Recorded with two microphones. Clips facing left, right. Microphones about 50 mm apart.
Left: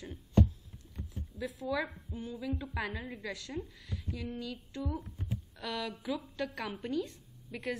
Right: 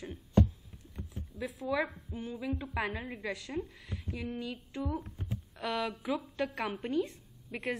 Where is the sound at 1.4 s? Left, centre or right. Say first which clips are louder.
Right 2 dB; right.